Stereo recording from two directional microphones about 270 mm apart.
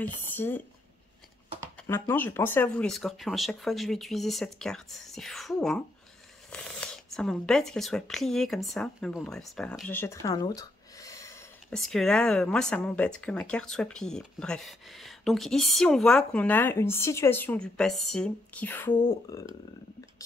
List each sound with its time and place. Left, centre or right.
0.3 s speech: centre
1.8 s speech: centre
11.7 s speech: centre